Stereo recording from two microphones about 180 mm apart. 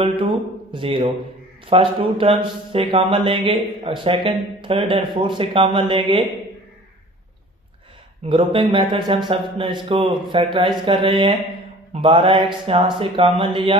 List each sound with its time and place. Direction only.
0.2 s speech: 30° right (ahead or behind)
8.3 s speech: 30° right (ahead or behind)